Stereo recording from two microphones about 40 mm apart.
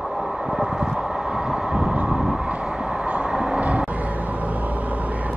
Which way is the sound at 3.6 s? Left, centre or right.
Right.